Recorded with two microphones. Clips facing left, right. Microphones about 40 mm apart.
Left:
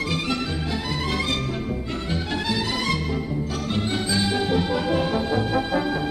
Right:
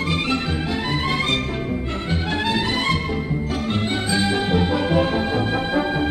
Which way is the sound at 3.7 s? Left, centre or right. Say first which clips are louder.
Right 2 dB; right.